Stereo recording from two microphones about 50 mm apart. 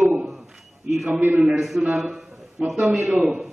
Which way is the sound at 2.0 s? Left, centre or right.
Centre.